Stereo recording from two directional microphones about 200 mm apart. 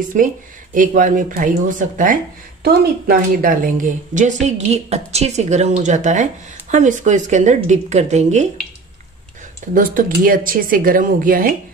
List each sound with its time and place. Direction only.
0.1 s a woman's voice: 40° right (ahead or behind)
9.8 s speech: 45° right (ahead or behind)